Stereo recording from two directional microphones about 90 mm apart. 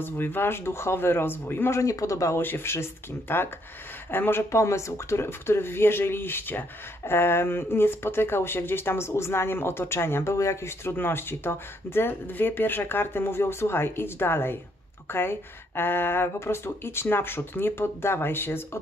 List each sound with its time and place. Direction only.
0.0 s speech: 25° left (ahead or behind)